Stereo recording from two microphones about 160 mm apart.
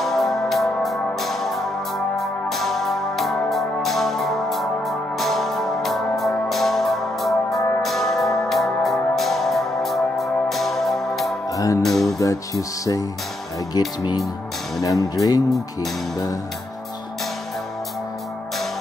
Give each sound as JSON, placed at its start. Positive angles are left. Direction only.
{"t": 0.0, "sound": "music", "side_deg": 0}
{"t": 11.5, "sound": "music", "side_deg": 20}
{"t": 11.8, "sound": "music", "side_deg": 0}
{"t": 12.2, "sound": "speech", "side_deg": 20}